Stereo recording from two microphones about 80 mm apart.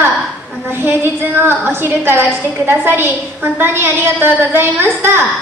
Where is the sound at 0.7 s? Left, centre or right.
Right.